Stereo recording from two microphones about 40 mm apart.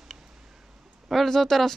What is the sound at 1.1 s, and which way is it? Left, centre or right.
Speech, centre.